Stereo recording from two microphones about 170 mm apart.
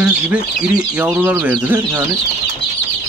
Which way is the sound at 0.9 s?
10° right (ahead or behind).